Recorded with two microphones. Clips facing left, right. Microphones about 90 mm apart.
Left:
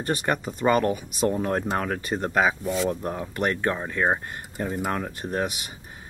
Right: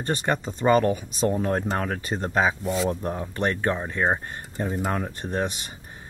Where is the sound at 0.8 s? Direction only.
30° right (ahead or behind).